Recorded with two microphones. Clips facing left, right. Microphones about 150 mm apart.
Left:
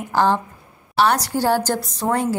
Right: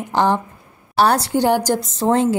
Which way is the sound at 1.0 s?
30° right (ahead or behind).